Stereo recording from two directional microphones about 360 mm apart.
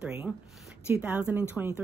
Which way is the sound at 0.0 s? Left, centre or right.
Centre.